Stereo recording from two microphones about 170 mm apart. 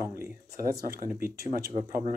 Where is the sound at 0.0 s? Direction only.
15° right (ahead or behind).